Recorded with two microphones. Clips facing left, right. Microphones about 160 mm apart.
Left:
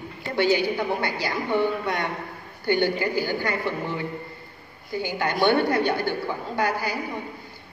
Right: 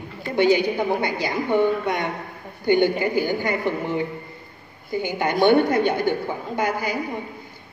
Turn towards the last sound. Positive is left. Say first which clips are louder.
# right 1 dB
turn(degrees=-20)  # may be behind; listen again after turning